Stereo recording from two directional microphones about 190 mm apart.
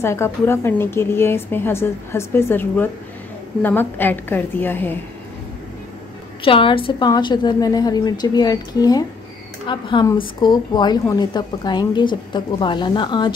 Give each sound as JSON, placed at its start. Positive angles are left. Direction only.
{"t": 0.0, "sound": "a woman's voice", "side_deg": 15}
{"t": 6.4, "sound": "a woman's voice", "side_deg": 30}